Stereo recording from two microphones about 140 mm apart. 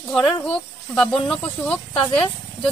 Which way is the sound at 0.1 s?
5° left (ahead or behind).